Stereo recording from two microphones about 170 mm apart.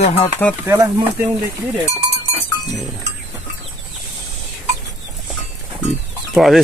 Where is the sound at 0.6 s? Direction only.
15° right (ahead or behind).